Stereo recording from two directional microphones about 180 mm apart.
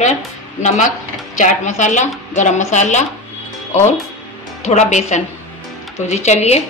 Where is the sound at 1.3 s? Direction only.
45° left (ahead or behind).